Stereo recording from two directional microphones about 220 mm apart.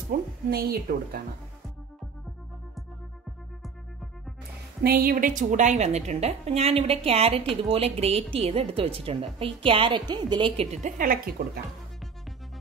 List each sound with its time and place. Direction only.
0.1 s speech: 45° right (ahead or behind)
4.8 s a woman's voice: 45° right (ahead or behind)